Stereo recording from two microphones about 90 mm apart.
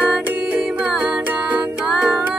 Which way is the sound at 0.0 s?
15° right (ahead or behind).